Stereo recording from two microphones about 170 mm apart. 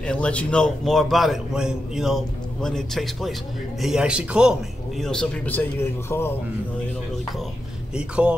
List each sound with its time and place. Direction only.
0.0 s a man's voice: 5° left (ahead or behind)
7.9 s a man's voice: 5° right (ahead or behind)